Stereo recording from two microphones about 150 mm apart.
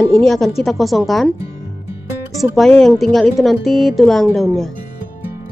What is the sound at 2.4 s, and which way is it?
A woman's voice, centre (ahead or behind).